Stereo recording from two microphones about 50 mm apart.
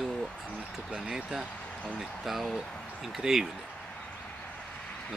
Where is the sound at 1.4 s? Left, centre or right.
Left.